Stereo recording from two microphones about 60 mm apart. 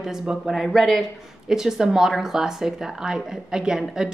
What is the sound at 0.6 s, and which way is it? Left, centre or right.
A woman's voice, centre.